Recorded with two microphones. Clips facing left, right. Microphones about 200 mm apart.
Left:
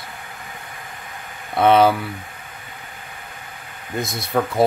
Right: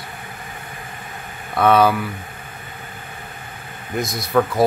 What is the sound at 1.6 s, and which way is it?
Speech, 25° left (ahead or behind).